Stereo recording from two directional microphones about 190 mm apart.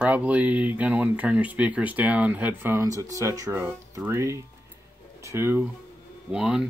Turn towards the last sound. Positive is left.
turn(degrees=-5)  # may be behind; listen again after turning